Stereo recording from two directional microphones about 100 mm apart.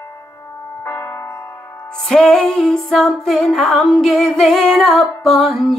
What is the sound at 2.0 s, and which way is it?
Music, 5° left (ahead or behind).